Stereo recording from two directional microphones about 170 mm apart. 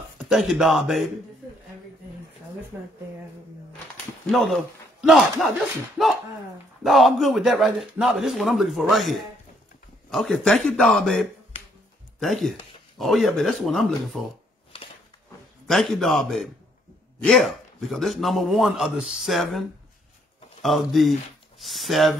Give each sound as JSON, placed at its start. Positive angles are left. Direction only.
{"t": 0.2, "sound": "a man's voice", "side_deg": 0}
{"t": 2.7, "sound": "speech", "side_deg": -10}
{"t": 4.3, "sound": "a man's voice", "side_deg": 0}
{"t": 14.7, "sound": "a sound", "side_deg": 35}
{"t": 15.6, "sound": "a man's voice", "side_deg": 0}
{"t": 20.6, "sound": "a man's voice", "side_deg": 0}